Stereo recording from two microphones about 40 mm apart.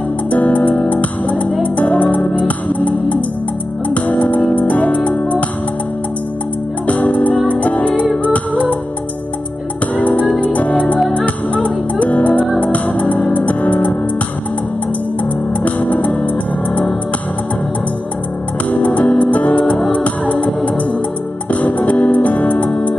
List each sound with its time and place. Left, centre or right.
0.3 s music: left
6.9 s music: left
9.9 s music: left
15.6 s music: left
18.7 s music: left
21.5 s music: left